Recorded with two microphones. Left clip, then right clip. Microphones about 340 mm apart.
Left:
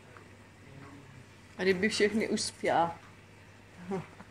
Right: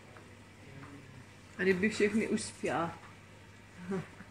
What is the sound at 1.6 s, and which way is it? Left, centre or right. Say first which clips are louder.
Speech: left 2 dB; centre.